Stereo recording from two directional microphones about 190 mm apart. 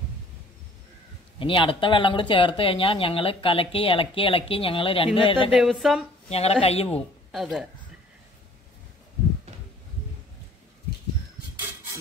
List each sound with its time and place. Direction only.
1.4 s speech: 25° left (ahead or behind)
5.5 s speech: centre (ahead or behind)
6.3 s speech: 30° left (ahead or behind)
7.3 s speech: centre (ahead or behind)